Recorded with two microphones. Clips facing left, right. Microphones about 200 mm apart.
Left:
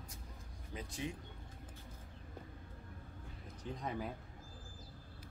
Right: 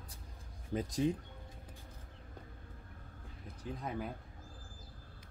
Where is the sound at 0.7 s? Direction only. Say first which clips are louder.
Right 10 dB; 40° right (ahead or behind).